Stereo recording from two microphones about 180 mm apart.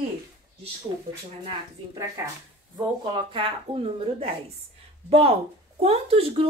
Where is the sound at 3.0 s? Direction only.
25° right (ahead or behind).